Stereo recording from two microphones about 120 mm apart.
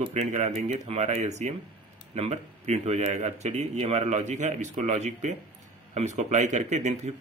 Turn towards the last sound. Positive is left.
turn(degrees=-70)  # may be behind; listen again after turning